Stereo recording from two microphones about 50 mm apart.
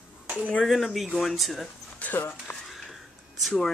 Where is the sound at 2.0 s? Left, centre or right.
Left.